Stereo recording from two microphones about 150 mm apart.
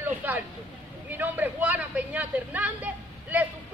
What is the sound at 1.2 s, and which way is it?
A man's voice, 10° right (ahead or behind).